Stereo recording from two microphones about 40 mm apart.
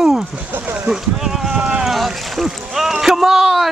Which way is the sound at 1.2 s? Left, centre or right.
Centre.